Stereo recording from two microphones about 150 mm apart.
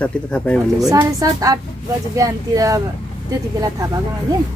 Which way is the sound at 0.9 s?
25° right (ahead or behind).